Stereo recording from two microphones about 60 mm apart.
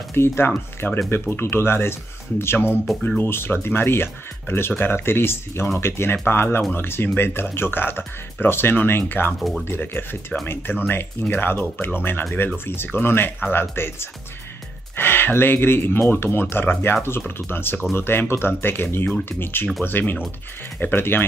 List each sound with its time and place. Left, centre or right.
0.1 s speech: left
9.4 s speech: centre
9.7 s speech: left